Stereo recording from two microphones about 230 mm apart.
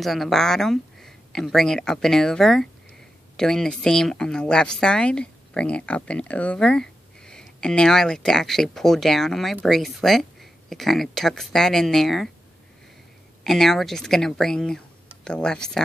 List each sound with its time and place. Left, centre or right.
0.0 s speech: centre
13.4 s speech: centre